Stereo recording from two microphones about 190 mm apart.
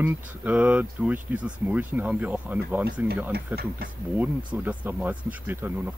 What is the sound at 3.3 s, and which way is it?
Speech, 55° right (ahead or behind).